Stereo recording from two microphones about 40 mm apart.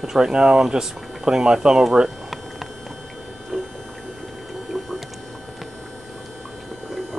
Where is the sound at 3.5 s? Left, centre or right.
Centre.